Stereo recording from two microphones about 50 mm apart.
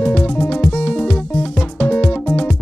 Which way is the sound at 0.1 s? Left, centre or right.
Left.